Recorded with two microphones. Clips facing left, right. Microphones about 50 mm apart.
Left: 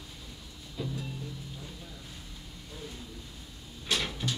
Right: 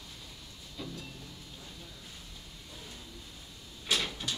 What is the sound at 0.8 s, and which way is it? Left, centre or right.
Music, centre.